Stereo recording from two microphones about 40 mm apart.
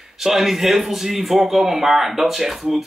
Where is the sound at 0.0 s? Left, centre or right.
Centre.